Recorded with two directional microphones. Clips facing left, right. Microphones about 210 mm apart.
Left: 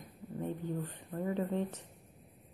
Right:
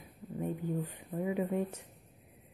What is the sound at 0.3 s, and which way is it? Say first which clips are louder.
A woman's voice: right 2 dB; 10° right (ahead or behind).